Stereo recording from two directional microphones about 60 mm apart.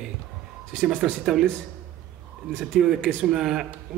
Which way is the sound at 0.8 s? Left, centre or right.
Centre.